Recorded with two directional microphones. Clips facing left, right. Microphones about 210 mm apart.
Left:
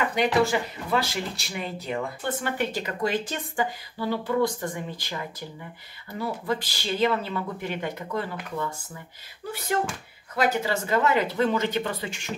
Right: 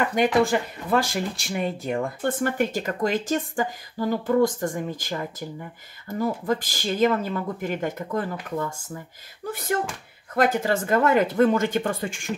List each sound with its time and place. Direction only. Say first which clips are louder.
0.1 s speech: right 2 dB; 50° right (ahead or behind)